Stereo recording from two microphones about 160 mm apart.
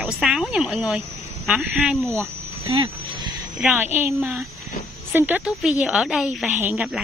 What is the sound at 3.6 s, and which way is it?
Speech, 10° right (ahead or behind).